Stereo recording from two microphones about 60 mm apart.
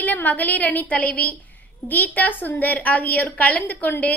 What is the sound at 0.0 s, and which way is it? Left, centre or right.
A woman's voice, left.